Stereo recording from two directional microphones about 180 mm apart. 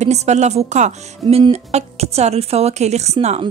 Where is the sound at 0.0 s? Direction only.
40° right (ahead or behind).